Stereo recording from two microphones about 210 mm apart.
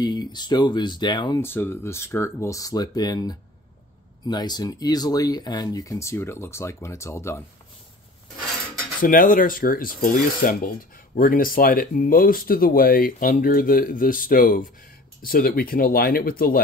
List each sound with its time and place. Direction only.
0.0 s speech: 20° left (ahead or behind)
9.0 s speech: 40° left (ahead or behind)